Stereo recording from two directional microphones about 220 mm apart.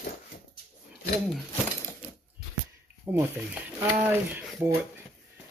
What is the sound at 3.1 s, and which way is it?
Speech, 10° right (ahead or behind).